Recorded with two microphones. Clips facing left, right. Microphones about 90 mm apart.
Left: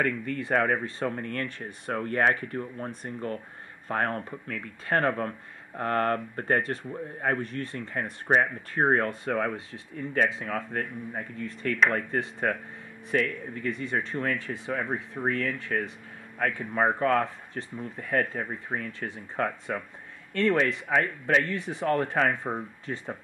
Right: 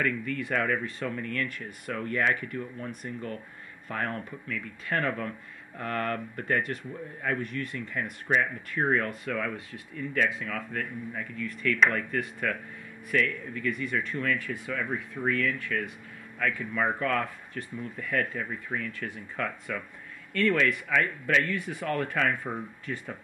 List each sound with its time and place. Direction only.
0.0 s speech: 40° left (ahead or behind)
18.9 s speech: 30° left (ahead or behind)